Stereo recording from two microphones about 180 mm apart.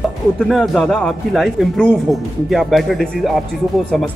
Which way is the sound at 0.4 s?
Centre (ahead or behind).